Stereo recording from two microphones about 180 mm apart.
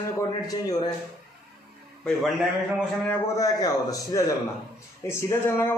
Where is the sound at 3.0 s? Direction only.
15° left (ahead or behind).